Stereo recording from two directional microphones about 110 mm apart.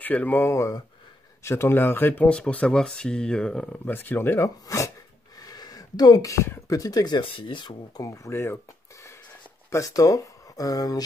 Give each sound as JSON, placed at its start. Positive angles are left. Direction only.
{"t": 0.0, "sound": "speech", "side_deg": 15}
{"t": 7.2, "sound": "speech", "side_deg": 50}